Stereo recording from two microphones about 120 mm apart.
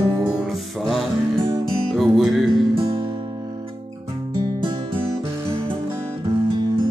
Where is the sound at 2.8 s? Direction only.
45° right (ahead or behind).